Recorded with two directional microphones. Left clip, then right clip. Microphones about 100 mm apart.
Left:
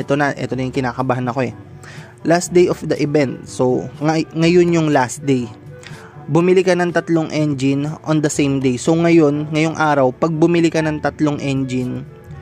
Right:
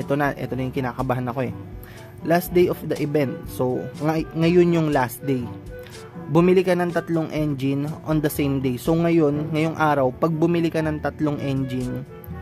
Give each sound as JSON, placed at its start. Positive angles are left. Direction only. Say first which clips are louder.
{"t": 0.0, "sound": "a man's voice", "louder": "left 5 dB", "side_deg": 40}